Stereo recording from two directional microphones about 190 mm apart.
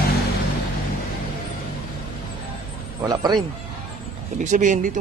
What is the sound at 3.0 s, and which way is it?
Speech, 20° right (ahead or behind).